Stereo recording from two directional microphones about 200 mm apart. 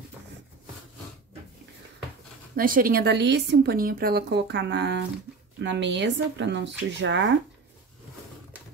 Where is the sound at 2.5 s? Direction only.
45° right (ahead or behind); by 7.3 s 65° right (ahead or behind).